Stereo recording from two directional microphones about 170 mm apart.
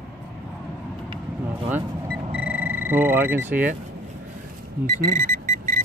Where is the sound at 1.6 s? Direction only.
10° right (ahead or behind).